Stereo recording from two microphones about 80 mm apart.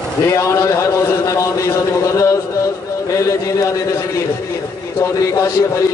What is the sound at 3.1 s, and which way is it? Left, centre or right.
Speech, left.